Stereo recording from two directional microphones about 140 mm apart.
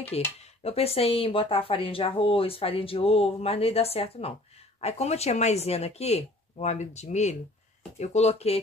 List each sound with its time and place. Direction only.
0.1 s speech: 45° left (ahead or behind)